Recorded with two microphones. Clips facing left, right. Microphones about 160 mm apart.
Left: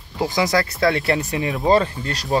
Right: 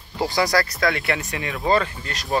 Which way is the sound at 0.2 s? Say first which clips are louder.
Left 1 dB; 20° left (ahead or behind).